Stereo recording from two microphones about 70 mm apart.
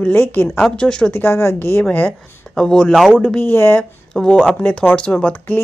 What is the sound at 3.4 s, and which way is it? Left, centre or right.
Speech, left.